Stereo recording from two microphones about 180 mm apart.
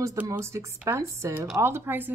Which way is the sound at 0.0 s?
15° right (ahead or behind).